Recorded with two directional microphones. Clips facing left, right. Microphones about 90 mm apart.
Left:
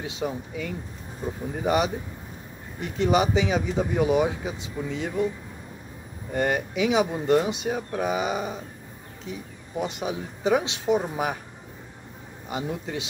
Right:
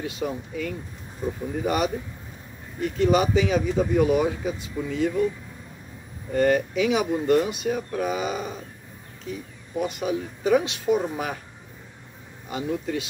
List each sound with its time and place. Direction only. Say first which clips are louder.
0.0 s speech: right 1 dB; 20° left (ahead or behind)
6.3 s speech: right 4 dB; 15° left (ahead or behind)
12.4 s speech: right 3 dB; 20° left (ahead or behind)